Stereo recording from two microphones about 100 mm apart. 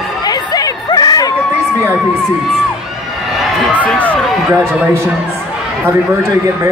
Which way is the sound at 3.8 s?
15° left (ahead or behind).